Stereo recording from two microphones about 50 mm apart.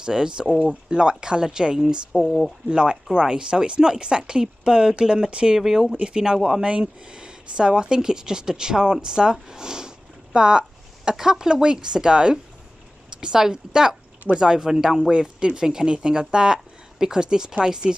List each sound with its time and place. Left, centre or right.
0.0 s speech: centre
2.1 s speech: centre
2.7 s speech: centre